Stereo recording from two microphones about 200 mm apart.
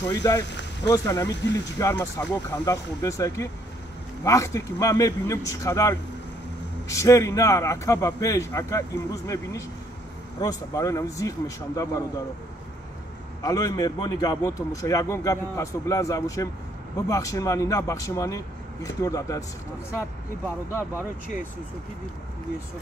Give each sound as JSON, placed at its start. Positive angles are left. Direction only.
{"t": 0.0, "sound": "a man's voice", "side_deg": 20}
{"t": 13.4, "sound": "a man's voice", "side_deg": 20}